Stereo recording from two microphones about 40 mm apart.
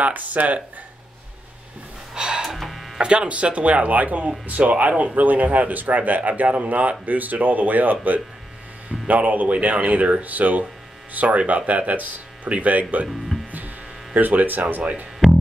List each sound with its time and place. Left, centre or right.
0.0 s speech: right
2.1 s music: right
2.4 s a sound: centre
3.0 s speech: right
13.5 s a sound: right
14.7 s speech: right